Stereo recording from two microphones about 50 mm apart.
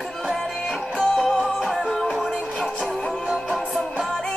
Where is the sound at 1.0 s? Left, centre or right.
Centre.